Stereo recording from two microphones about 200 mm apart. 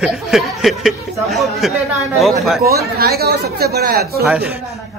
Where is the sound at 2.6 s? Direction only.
50° right (ahead or behind).